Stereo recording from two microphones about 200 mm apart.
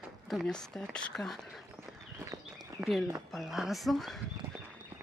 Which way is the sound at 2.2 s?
15° right (ahead or behind).